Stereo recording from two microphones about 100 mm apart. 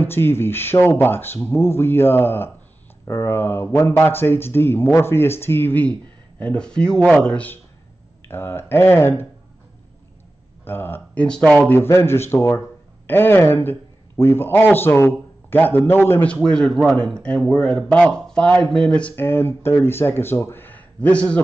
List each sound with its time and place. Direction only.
0.0 s speech: 20° left (ahead or behind)
10.6 s speech: 20° left (ahead or behind)
11.2 s speech: 10° left (ahead or behind)